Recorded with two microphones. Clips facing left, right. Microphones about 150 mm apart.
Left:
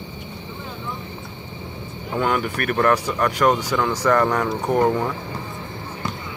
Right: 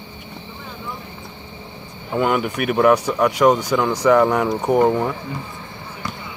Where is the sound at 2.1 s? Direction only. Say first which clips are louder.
Right 3 dB; 5° right (ahead or behind).